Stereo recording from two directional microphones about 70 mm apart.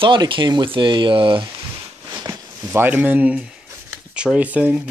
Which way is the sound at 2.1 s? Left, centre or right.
Right.